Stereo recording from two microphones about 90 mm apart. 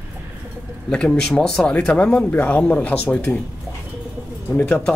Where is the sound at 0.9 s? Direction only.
10° left (ahead or behind).